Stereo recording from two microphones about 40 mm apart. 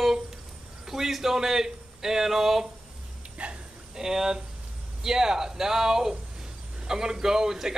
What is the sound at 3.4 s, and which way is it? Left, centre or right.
Bow-wow, right.